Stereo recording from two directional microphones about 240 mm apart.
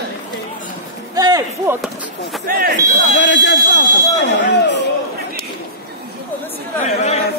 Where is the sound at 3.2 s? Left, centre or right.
Left.